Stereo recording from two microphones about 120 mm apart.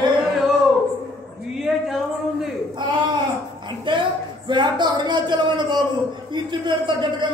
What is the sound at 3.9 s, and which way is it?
A man's voice, 40° right (ahead or behind).